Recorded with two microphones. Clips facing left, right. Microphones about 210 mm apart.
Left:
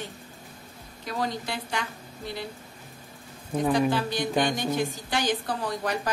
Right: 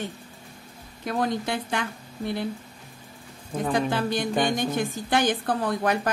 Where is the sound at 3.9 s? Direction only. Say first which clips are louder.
Right 1 dB; 55° right (ahead or behind).